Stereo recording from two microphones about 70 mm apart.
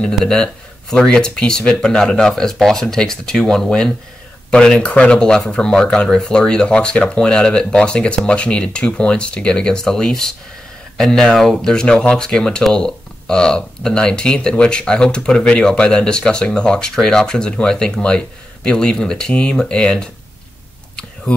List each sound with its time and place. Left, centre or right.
0.0 s speech: centre